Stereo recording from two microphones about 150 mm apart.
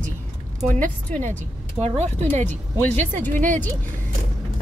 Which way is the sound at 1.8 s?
45° right (ahead or behind).